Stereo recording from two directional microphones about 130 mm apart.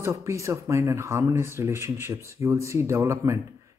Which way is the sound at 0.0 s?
20° right (ahead or behind).